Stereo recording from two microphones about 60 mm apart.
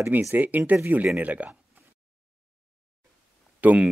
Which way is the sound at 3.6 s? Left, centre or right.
Right.